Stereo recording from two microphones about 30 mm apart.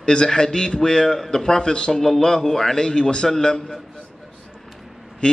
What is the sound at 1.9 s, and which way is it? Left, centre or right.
A man's voice, centre.